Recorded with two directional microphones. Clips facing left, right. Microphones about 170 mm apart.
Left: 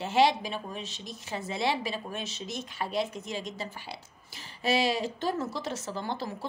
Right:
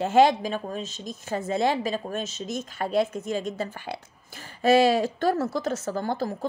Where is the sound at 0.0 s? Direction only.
50° right (ahead or behind).